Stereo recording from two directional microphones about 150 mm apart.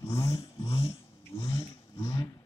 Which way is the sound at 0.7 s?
35° left (ahead or behind).